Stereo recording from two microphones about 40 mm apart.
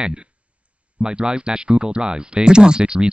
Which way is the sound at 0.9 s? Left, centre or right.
Right.